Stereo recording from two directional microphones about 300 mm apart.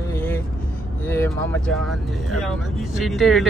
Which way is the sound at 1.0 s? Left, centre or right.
Centre.